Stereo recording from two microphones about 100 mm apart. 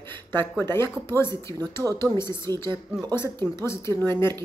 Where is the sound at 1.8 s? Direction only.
5° right (ahead or behind).